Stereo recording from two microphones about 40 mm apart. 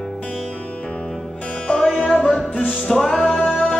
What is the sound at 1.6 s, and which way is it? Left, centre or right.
Music, centre.